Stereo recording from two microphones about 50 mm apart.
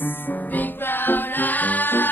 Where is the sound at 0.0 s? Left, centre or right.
Left.